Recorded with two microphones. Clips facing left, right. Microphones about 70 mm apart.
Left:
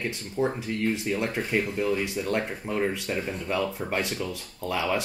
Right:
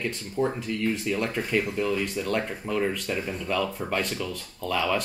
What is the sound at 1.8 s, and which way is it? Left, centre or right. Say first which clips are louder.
Speech: even; left.